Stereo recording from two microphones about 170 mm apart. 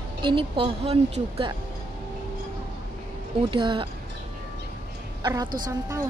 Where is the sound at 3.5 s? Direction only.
30° right (ahead or behind).